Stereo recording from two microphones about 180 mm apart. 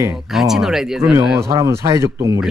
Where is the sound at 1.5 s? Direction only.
15° right (ahead or behind).